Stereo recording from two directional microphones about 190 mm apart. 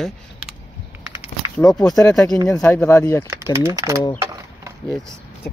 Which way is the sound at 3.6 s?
15° right (ahead or behind).